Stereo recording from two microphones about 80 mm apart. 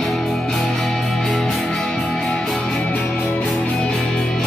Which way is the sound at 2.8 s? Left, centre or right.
Centre.